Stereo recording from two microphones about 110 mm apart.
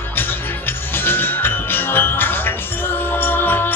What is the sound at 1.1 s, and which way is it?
Music, 20° left (ahead or behind).